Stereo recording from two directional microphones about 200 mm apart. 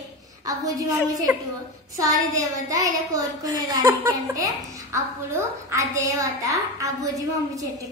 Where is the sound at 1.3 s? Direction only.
5° right (ahead or behind).